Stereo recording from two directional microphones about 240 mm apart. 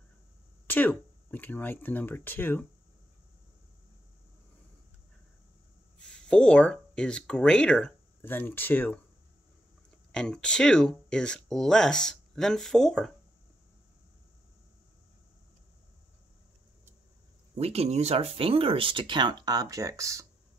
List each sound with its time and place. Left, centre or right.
0.7 s speech: centre
5.9 s speech: centre
10.1 s speech: centre
17.6 s speech: right